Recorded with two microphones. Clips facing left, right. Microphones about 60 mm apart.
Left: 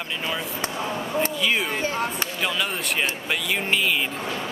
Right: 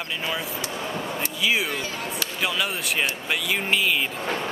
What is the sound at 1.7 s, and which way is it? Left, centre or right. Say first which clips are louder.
Speech: left 4 dB; left.